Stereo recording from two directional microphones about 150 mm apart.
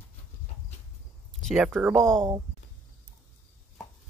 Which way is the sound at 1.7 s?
15° right (ahead or behind).